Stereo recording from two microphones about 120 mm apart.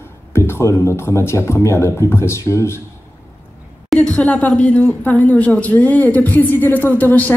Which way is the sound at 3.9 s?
5° left (ahead or behind).